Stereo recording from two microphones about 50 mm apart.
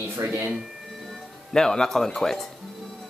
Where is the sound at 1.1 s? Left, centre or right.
Centre.